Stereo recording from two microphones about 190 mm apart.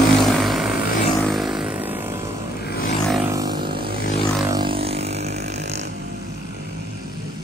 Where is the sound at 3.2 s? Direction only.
20° right (ahead or behind).